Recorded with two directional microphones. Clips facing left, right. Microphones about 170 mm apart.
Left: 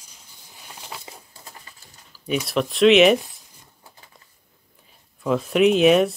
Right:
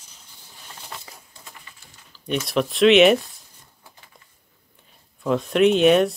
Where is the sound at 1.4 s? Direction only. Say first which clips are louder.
Left 1 dB; 40° left (ahead or behind).